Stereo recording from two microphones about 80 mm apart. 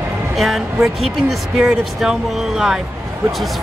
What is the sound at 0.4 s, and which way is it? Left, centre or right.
A man's voice, centre.